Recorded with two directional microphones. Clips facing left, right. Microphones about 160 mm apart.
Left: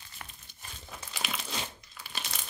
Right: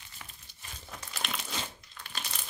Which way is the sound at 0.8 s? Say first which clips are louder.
Even; 5° left (ahead or behind).